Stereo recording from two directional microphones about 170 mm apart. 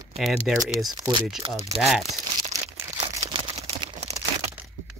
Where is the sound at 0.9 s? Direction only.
25° right (ahead or behind).